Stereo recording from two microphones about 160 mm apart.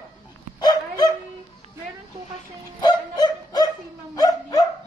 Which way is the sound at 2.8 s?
25° left (ahead or behind).